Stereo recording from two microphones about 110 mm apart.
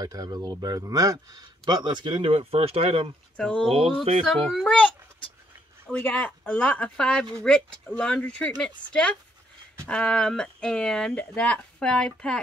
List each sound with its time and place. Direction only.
0.0 s speech: 35° right (ahead or behind); by 3.1 s 55° right (ahead or behind)
3.3 s speech: 10° left (ahead or behind)
3.6 s speech: 60° right (ahead or behind)
4.2 s a child's voice: 5° left (ahead or behind)
5.9 s speech: 10° left (ahead or behind)